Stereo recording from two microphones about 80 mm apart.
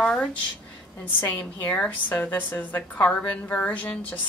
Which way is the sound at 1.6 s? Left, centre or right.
Centre.